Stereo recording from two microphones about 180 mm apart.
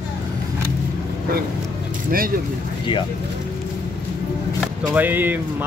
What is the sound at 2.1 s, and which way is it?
Speech, 55° right (ahead or behind).